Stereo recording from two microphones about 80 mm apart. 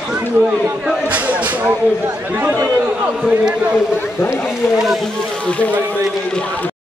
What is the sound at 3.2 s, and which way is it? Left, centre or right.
Speech, centre.